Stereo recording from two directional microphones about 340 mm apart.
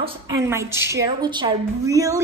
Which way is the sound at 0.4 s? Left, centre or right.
Centre.